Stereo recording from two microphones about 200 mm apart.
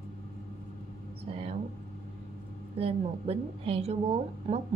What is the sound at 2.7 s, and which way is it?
A woman's voice, 30° right (ahead or behind).